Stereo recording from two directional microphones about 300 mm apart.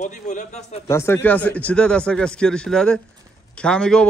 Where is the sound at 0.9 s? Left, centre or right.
Centre.